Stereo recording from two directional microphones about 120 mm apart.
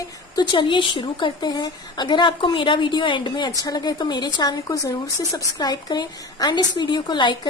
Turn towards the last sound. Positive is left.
turn(degrees=40)  # may be behind; listen again after turning